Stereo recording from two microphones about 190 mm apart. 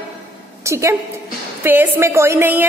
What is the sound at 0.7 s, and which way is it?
A woman's voice, 15° right (ahead or behind).